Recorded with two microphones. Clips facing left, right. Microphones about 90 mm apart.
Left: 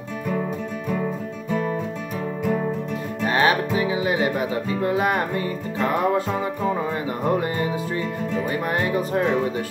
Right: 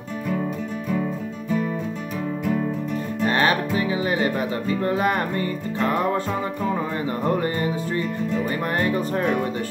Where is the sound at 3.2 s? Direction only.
15° left (ahead or behind).